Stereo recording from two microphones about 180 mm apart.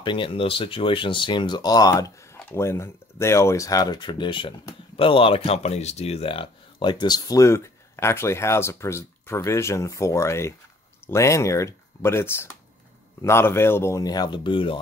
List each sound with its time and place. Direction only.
0.0 s speech: 25° left (ahead or behind)